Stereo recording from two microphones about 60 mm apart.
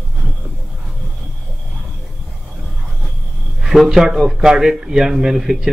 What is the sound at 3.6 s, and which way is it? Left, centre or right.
A man's voice, centre.